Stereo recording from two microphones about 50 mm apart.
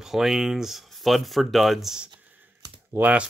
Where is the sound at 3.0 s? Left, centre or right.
Right.